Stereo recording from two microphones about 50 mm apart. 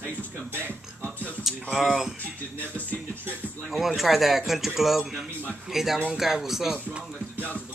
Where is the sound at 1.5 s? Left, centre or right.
Centre.